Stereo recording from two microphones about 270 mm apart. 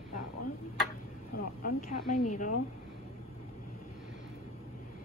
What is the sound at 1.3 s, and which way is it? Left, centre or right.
Music, left.